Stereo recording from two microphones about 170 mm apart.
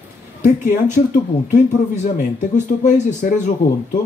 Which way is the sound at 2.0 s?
45° left (ahead or behind).